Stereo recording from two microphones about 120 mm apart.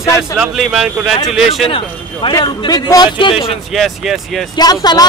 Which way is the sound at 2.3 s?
35° left (ahead or behind).